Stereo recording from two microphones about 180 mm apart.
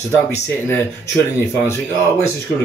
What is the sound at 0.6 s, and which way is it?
Speech, 15° left (ahead or behind).